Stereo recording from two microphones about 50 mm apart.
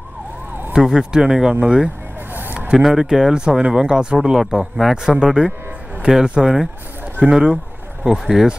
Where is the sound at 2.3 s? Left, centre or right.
Right.